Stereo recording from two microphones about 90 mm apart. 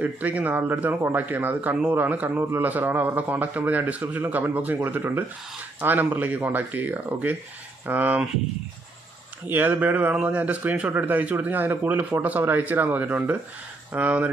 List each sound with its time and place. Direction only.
0.0 s speech: 15° right (ahead or behind)
9.5 s speech: 20° right (ahead or behind)